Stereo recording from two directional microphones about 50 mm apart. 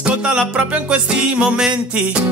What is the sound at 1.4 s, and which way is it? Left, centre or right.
Music, centre.